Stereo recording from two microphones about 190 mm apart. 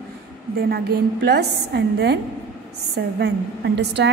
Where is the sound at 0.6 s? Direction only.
55° right (ahead or behind).